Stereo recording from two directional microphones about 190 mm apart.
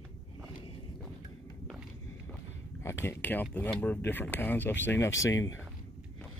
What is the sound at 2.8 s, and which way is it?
Speech, 15° left (ahead or behind).